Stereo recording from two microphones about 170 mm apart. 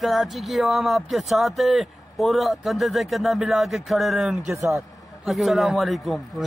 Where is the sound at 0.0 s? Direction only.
Centre (ahead or behind).